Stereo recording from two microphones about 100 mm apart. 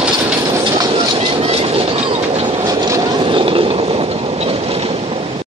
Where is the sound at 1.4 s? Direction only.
80° right.